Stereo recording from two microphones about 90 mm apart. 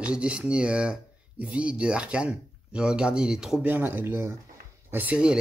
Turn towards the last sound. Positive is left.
turn(degrees=-15)  # may be behind; listen again after turning